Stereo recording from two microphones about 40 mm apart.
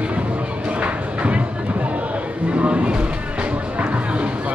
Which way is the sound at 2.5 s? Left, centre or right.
Right.